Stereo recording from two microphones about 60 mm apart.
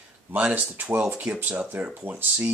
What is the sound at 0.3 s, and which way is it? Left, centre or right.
Speech, right.